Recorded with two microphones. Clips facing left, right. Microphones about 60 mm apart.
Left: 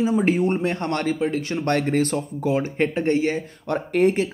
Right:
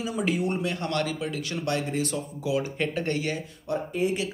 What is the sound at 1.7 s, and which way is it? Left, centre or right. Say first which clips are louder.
Speech: left 7 dB; left.